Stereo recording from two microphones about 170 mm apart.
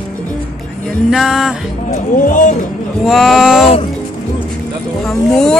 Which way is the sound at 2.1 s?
50° left (ahead or behind).